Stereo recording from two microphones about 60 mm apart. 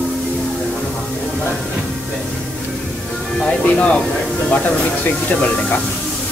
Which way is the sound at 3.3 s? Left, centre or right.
Centre.